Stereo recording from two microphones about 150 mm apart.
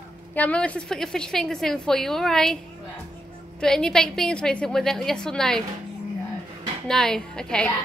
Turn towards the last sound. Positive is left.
turn(degrees=5)  # may be behind; listen again after turning